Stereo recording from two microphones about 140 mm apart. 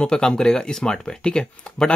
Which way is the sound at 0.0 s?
5° left (ahead or behind).